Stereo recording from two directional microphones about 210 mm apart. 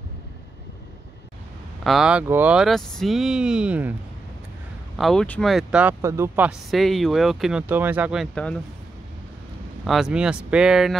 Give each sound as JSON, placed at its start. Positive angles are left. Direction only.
{"t": 1.9, "sound": "speech", "side_deg": -5}
{"t": 4.9, "sound": "speech", "side_deg": 0}
{"t": 9.8, "sound": "speech", "side_deg": 0}